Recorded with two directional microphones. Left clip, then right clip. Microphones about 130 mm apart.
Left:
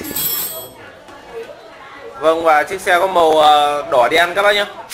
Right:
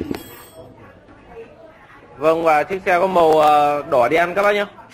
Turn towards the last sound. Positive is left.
turn(degrees=-5)  # may be behind; listen again after turning